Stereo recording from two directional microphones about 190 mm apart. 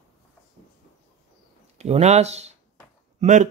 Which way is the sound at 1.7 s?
35° right (ahead or behind).